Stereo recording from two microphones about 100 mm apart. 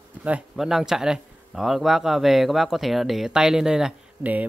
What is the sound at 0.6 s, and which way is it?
Speech, 5° right (ahead or behind).